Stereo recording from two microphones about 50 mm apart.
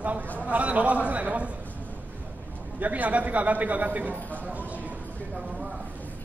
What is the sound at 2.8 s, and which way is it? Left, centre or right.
A man's voice, right.